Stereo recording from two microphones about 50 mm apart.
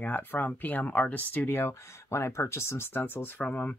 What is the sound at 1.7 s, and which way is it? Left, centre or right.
Speech, left.